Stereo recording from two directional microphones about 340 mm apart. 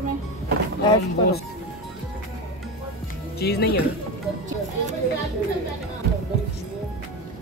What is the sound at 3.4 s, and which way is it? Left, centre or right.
Speech, left.